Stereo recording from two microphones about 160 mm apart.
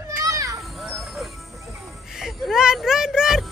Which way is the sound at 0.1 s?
20° right (ahead or behind).